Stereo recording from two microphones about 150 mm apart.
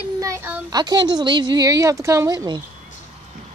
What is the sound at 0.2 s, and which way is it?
Child singing, 20° right (ahead or behind).